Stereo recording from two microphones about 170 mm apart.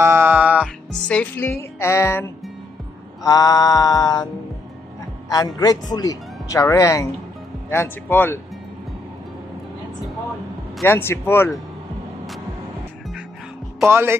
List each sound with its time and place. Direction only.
0.0 s music: 15° right (ahead or behind)
1.0 s speech: 5° left (ahead or behind); by 4.3 s 25° left (ahead or behind)
5.3 s speech: 20° left (ahead or behind)
10.8 s speech: 15° left (ahead or behind)
13.8 s speech: 15° right (ahead or behind)